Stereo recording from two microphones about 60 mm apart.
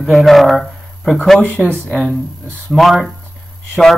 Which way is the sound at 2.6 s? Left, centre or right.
Centre.